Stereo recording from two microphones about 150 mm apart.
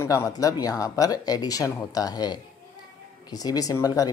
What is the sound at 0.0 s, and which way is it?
Speech, 20° left (ahead or behind).